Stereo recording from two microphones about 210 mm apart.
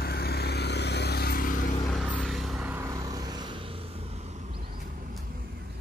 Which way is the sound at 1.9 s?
5° left (ahead or behind).